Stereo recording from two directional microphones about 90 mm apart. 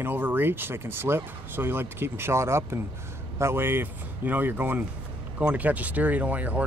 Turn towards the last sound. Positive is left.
turn(degrees=-15)  # may be behind; listen again after turning